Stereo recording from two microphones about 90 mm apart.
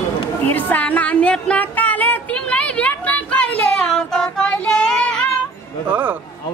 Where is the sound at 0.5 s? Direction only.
20° left (ahead or behind).